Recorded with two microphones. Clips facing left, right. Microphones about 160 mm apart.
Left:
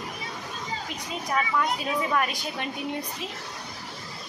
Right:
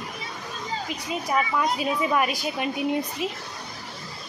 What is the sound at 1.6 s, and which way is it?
A woman's voice, 10° right (ahead or behind).